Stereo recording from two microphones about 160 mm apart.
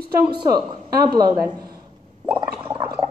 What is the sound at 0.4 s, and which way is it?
Speech, 30° right (ahead or behind).